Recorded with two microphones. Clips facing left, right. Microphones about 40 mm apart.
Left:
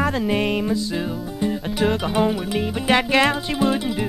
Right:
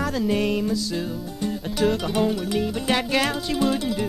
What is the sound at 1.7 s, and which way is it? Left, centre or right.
Music, left.